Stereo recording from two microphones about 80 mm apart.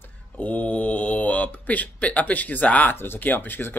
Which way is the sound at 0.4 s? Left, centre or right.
Centre.